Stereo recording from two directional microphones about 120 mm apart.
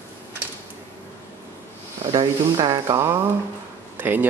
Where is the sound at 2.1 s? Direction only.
35° right (ahead or behind).